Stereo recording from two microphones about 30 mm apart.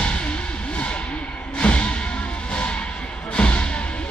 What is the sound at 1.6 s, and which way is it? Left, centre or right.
Music, left.